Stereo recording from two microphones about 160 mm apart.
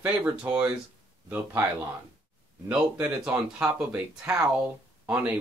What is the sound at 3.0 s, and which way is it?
Speech, 15° right (ahead or behind).